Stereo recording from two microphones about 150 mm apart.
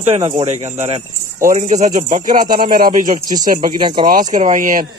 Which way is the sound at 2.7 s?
65° right (ahead or behind).